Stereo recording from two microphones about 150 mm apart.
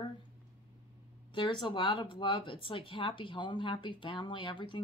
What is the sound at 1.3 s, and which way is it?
Speech, 30° left (ahead or behind).